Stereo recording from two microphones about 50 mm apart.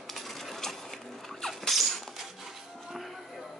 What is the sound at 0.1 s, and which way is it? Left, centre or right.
Coin, centre.